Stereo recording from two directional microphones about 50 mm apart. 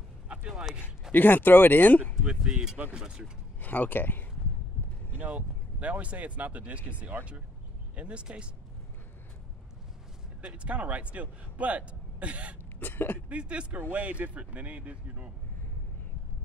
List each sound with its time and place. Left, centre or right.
0.3 s a sound: right
1.1 s speech: left
2.2 s speech: centre
3.6 s speech: left
5.1 s speech: right
7.9 s a man's voice: right
10.4 s a man's voice: right
12.8 s speech: left
13.3 s a man's voice: right